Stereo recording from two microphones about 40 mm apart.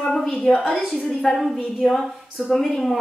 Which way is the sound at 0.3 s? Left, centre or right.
Centre.